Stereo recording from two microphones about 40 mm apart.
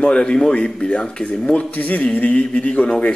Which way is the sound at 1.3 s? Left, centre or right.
Left.